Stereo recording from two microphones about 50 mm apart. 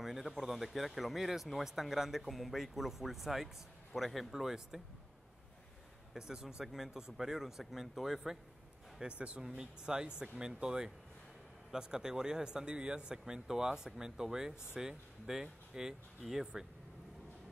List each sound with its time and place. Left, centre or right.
0.0 s speech: centre
6.1 s speech: centre
9.0 s speech: centre